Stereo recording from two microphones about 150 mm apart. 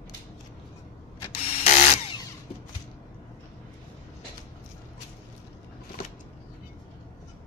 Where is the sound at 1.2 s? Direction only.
45° left (ahead or behind).